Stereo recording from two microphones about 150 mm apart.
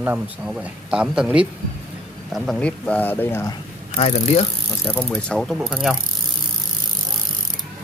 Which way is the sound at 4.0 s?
45° left (ahead or behind).